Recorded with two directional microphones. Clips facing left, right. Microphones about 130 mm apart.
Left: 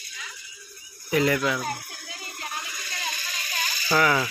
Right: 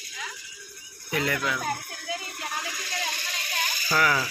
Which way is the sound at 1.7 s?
55° right (ahead or behind).